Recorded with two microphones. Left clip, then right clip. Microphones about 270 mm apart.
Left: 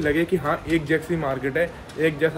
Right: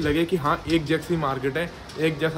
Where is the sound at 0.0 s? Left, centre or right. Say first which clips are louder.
Left 1 dB; centre.